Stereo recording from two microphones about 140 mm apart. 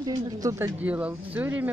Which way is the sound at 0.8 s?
10° right (ahead or behind).